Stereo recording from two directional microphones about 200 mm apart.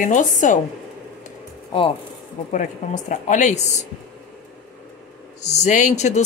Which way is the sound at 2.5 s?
40° left (ahead or behind).